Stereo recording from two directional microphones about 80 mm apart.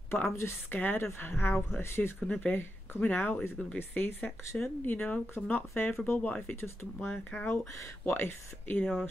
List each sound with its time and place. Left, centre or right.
0.1 s speech: left
6.1 s speech: centre
6.5 s speech: left